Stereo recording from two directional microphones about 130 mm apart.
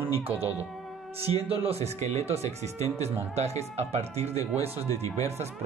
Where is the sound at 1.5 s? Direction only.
50° right (ahead or behind).